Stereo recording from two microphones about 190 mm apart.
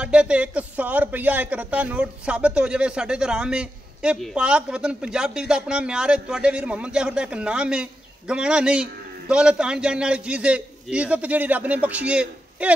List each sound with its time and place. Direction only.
0.0 s a man's voice: 5° right (ahead or behind)